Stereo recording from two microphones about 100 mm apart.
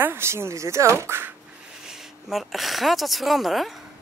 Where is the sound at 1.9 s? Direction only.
Centre (ahead or behind).